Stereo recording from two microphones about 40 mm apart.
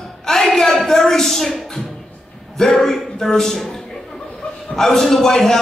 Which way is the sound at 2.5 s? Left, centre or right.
Centre.